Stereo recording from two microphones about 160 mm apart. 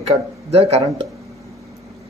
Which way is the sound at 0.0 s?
40° right (ahead or behind).